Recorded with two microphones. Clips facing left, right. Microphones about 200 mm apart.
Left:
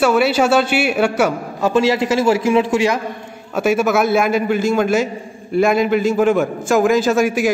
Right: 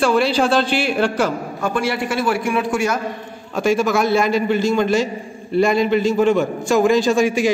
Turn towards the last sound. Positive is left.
turn(degrees=5)  # may be behind; listen again after turning